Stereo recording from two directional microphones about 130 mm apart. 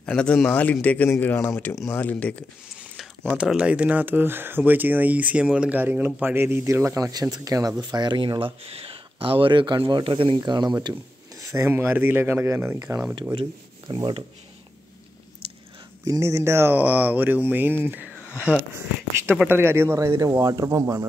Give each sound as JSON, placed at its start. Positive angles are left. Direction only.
{"t": 0.0, "sound": "a man's voice", "side_deg": 10}
{"t": 3.3, "sound": "speech", "side_deg": -10}
{"t": 13.3, "sound": "speech", "side_deg": -35}
{"t": 15.4, "sound": "a sound", "side_deg": -45}
{"t": 16.1, "sound": "speech", "side_deg": -25}
{"t": 18.2, "sound": "a sound", "side_deg": -10}
{"t": 19.4, "sound": "speech", "side_deg": -15}